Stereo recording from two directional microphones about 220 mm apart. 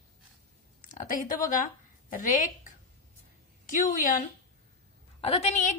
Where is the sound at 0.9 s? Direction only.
35° left (ahead or behind).